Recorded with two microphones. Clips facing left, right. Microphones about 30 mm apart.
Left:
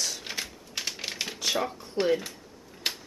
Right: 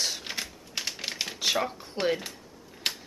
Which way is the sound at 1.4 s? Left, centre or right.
Centre.